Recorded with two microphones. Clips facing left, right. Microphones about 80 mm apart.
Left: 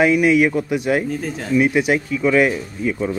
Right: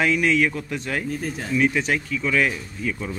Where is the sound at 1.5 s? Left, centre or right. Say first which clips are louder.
Left 5 dB; centre.